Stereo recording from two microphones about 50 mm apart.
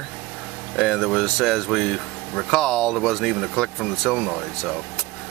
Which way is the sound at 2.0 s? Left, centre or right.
Centre.